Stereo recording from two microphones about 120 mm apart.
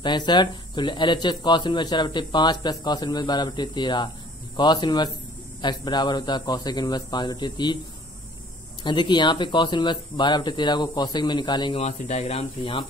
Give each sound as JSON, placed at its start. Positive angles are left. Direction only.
{"t": 0.0, "sound": "speech", "side_deg": 40}
{"t": 8.8, "sound": "speech", "side_deg": 40}
{"t": 11.7, "sound": "speech", "side_deg": 65}